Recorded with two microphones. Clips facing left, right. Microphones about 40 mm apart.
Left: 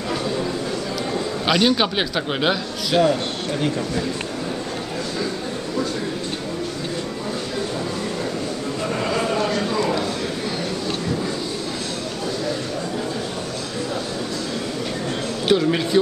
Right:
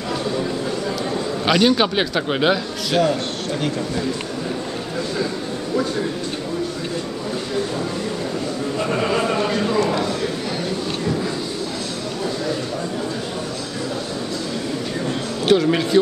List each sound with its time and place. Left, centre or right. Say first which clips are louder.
1.4 s a man's voice: right 2 dB; centre
8.8 s a sound: right 2 dB; centre
9.2 s horse: right 1 dB; centre
15.4 s a man's voice: right 2 dB; centre